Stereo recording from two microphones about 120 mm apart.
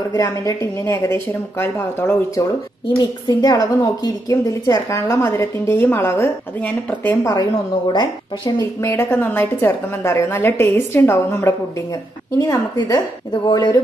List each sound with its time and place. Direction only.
0.1 s a woman's voice: 30° left (ahead or behind)
3.0 s a woman's voice: 35° left (ahead or behind); by 7.2 s 15° left (ahead or behind)
7.9 s a woman's voice: 35° left (ahead or behind)
8.8 s a woman's voice: 20° left (ahead or behind); by 13.7 s 35° left (ahead or behind)